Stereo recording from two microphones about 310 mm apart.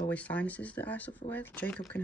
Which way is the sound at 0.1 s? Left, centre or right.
Centre.